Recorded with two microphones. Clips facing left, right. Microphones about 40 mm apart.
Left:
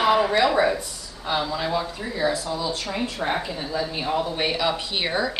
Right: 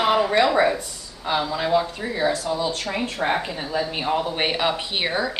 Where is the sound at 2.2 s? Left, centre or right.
Right.